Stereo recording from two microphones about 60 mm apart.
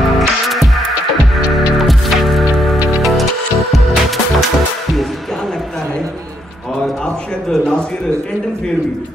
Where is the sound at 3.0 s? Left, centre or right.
Centre.